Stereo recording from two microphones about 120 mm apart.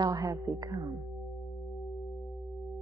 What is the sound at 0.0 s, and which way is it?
Speech, 30° right (ahead or behind).